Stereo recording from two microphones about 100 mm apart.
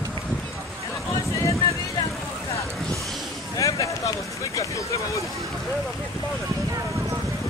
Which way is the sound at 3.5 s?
35° left (ahead or behind).